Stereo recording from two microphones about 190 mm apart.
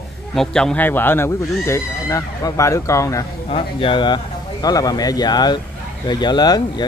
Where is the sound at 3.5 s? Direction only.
30° left (ahead or behind).